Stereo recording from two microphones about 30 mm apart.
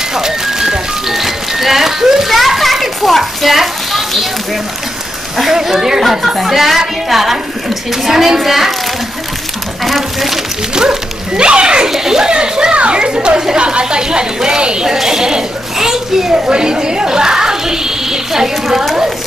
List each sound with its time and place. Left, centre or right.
0.1 s music: centre
2.2 s children playing: centre
5.5 s speech: centre
9.8 s a woman's voice: centre
10.7 s a child's voice: right
11.9 s speech: centre
12.3 s a woman's voice: right
12.7 s a child's voice: right
13.0 s a woman's voice: right
15.0 s speech: centre
16.3 s speech: right